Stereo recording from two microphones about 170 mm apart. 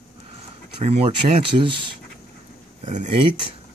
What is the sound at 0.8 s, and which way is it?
Speech, 40° right (ahead or behind).